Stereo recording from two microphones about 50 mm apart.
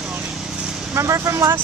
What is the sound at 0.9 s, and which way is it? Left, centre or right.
Speech, right.